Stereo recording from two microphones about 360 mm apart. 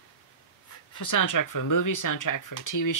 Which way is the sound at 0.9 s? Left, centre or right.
Left.